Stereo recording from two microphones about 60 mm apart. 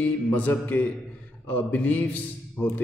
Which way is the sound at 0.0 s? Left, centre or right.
Left.